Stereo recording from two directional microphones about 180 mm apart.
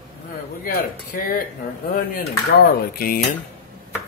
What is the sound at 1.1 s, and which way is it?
Speech, 60° left (ahead or behind).